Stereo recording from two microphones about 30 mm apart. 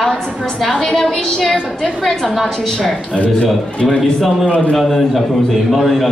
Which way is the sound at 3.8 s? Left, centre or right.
Centre.